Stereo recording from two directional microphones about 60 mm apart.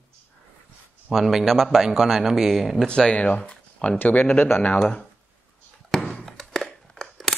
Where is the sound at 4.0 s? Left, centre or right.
Left.